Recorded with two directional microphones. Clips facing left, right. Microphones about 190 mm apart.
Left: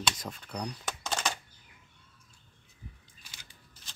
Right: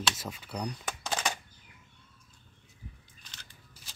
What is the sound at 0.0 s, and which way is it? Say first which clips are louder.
Speech: even; 5° right (ahead or behind).